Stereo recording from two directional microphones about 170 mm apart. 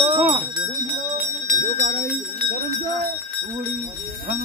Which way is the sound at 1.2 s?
50° right (ahead or behind).